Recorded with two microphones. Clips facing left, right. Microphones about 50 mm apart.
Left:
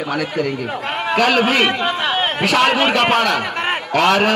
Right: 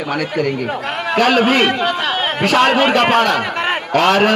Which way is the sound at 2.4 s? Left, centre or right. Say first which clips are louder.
Right 3 dB; right.